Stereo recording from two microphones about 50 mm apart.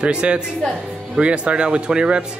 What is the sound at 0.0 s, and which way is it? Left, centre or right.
Speech, right.